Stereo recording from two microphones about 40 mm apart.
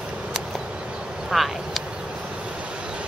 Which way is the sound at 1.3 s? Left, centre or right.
Centre.